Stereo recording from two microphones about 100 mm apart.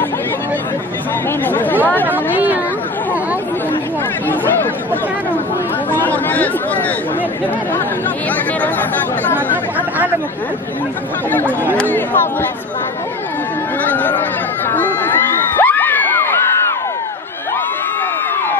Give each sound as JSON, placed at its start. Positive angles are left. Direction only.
{"t": 1.4, "sound": "speech", "side_deg": 20}
{"t": 2.0, "sound": "a sound", "side_deg": -15}
{"t": 4.3, "sound": "chatter", "side_deg": 20}
{"t": 5.9, "sound": "chatter", "side_deg": 20}
{"t": 9.3, "sound": "speech", "side_deg": -15}
{"t": 11.7, "sound": "speech", "side_deg": 15}
{"t": 13.8, "sound": "a sound", "side_deg": 15}
{"t": 14.7, "sound": "crowd", "side_deg": 20}